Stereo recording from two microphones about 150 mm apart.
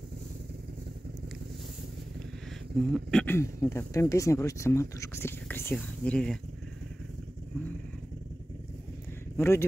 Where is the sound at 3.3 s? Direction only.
15° left (ahead or behind).